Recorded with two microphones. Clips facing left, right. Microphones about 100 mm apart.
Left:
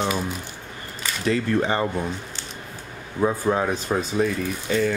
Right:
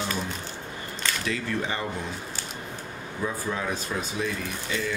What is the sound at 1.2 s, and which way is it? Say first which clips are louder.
Speech: left 10 dB; 40° left (ahead or behind).